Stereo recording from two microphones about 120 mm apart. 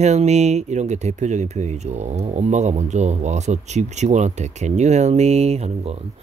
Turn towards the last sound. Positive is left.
turn(degrees=-60)  # may be behind; listen again after turning